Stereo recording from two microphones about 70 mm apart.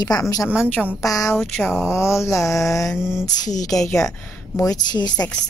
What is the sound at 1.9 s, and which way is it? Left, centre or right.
A woman's voice, left.